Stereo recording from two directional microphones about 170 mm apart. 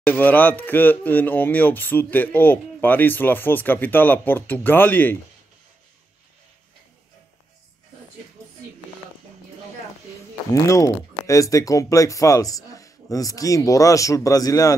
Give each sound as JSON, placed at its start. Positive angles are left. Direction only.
{"t": 0.0, "sound": "speech", "side_deg": 10}
{"t": 10.5, "sound": "speech", "side_deg": 20}